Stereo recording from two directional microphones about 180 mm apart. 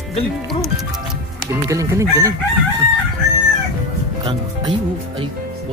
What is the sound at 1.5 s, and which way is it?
Chicken, 15° right (ahead or behind).